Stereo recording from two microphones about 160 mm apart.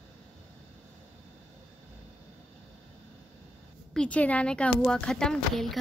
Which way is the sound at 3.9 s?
5° left (ahead or behind).